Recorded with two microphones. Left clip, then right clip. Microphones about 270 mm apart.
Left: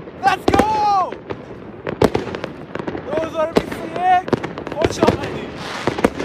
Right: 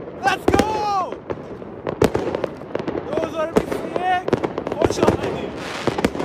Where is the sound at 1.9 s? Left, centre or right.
Right.